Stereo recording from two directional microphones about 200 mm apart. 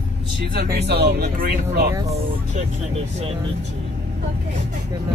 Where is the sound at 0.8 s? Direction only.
55° right (ahead or behind).